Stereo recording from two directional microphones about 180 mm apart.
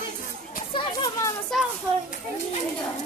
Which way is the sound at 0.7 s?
25° left (ahead or behind).